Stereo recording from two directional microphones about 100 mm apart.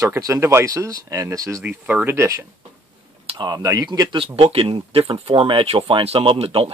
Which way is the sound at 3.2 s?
60° right (ahead or behind).